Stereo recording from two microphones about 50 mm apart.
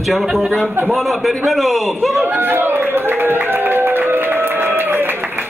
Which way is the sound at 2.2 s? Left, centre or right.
Right.